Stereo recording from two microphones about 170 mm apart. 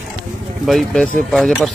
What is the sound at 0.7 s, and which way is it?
Speech, centre (ahead or behind).